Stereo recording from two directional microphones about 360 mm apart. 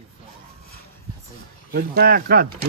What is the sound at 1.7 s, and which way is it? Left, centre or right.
Speech, right.